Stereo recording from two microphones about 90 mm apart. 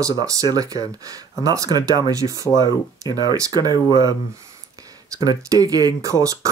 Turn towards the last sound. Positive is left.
turn(degrees=-35)  # may be behind; listen again after turning